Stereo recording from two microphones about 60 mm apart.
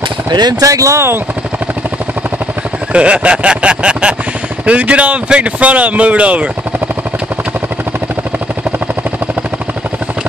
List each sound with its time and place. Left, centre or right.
0.6 s speech: right
0.9 s speech: right
2.9 s speech: centre